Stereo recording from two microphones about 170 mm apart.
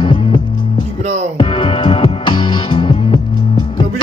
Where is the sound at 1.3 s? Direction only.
30° left (ahead or behind).